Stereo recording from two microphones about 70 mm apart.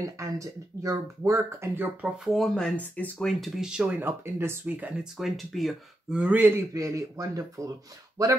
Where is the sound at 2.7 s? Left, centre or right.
Left.